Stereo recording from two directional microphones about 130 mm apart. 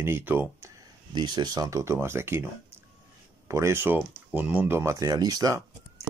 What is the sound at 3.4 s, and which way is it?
Speech, 20° right (ahead or behind).